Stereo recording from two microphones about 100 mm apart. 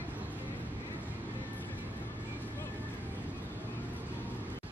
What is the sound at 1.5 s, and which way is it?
Music, 20° left (ahead or behind).